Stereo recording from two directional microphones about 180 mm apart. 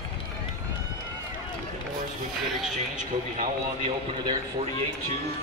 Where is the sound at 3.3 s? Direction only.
30° right (ahead or behind).